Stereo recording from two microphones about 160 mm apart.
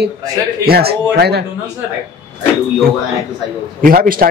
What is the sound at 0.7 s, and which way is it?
Speech, 80° right.